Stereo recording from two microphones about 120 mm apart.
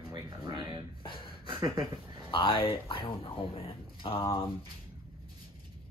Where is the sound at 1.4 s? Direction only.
30° right (ahead or behind).